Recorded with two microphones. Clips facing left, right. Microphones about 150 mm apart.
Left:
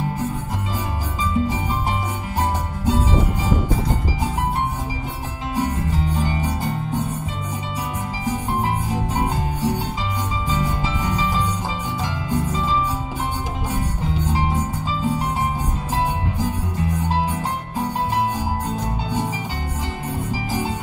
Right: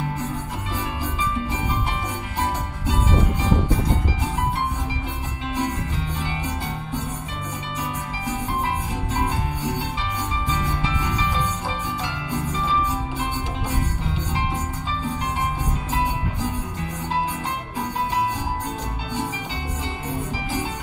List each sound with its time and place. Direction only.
2.9 s music: 40° left (ahead or behind)
5.6 s music: 35° left (ahead or behind)
8.3 s music: 40° left (ahead or behind)
10.5 s music: 35° left (ahead or behind)